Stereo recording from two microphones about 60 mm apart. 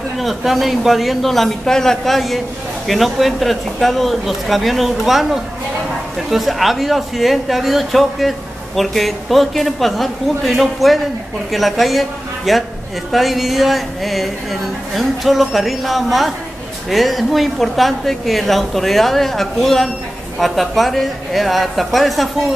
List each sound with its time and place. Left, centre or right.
0.2 s a man's voice: centre